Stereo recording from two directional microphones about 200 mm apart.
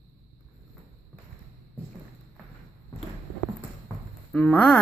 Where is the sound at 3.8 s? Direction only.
5° left (ahead or behind).